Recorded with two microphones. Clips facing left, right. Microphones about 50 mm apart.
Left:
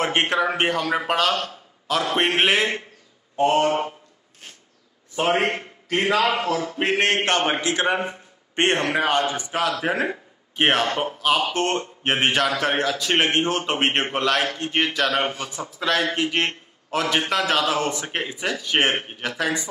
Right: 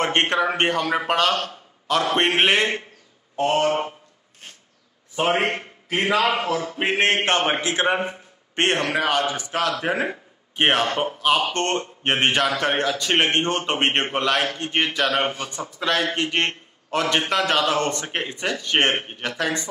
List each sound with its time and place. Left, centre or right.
0.0 s speech: centre
5.1 s a man's voice: centre
9.1 s a man's voice: centre
9.5 s speech: centre